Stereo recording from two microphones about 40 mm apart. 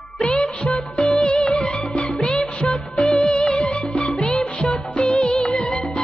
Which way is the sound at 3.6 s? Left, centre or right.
Left.